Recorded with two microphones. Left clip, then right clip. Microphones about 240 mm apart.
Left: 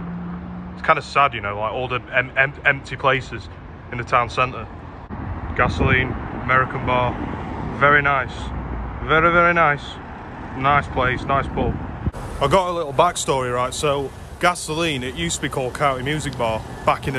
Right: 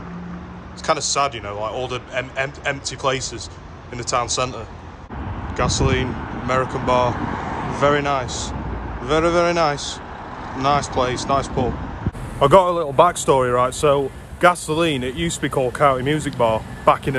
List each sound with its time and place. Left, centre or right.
0.8 s speech: centre
5.6 s speech: centre
7.2 s vehicle: centre
9.0 s speech: centre
12.4 s speech: centre